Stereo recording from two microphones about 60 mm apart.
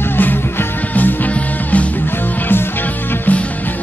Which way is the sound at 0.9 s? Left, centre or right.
Left.